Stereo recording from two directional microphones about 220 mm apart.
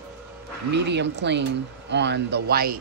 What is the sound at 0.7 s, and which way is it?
Speech, 50° right (ahead or behind).